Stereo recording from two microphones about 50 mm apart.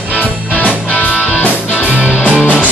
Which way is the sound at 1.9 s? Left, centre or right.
Right.